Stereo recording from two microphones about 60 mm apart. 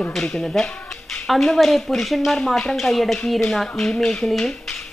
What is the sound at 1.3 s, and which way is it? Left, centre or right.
Speech, centre.